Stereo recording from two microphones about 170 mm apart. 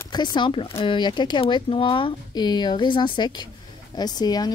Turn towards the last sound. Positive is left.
turn(degrees=25)  # may be behind; listen again after turning